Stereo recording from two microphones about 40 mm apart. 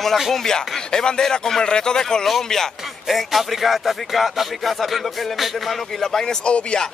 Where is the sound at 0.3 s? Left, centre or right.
Centre.